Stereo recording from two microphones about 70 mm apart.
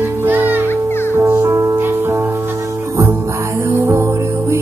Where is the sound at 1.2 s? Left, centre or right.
Right.